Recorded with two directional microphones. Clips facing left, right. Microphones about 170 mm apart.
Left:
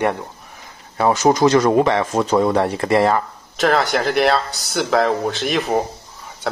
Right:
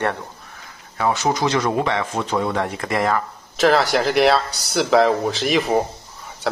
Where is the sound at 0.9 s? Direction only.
40° left (ahead or behind).